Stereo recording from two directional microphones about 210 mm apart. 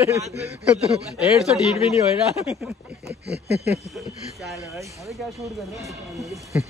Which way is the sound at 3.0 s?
50° right (ahead or behind).